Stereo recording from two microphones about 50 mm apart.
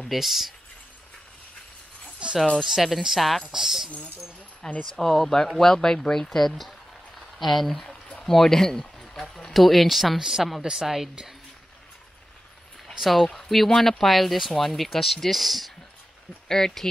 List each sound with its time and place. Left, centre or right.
0.1 s speech: centre
2.2 s a sound: centre
2.6 s speech: centre
4.8 s a woman's voice: centre
13.0 s speech: centre
16.4 s speech: centre